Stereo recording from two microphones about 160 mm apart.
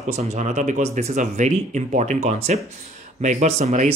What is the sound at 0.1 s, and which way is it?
Speech, 45° right (ahead or behind).